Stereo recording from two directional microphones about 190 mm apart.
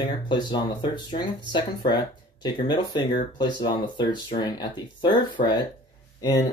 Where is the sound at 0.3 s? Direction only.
25° left (ahead or behind).